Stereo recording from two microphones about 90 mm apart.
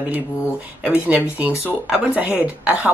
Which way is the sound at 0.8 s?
15° right (ahead or behind).